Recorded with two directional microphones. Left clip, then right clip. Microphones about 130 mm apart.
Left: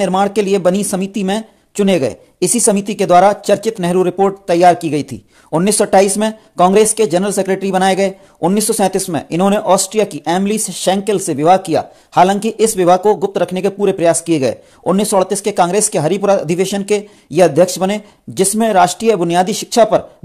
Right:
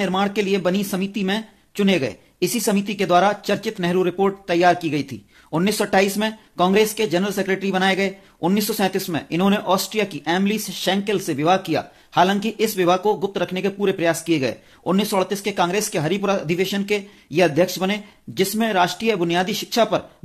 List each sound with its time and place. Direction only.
0.0 s speech: 50° left (ahead or behind)